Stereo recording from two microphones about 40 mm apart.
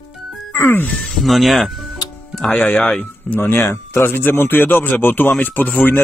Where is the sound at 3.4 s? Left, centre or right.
Left.